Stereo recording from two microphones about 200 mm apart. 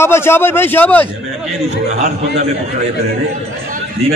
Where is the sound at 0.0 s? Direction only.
10° left (ahead or behind).